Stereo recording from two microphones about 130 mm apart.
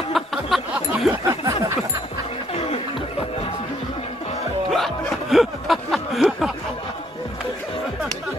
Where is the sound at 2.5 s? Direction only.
60° left (ahead or behind).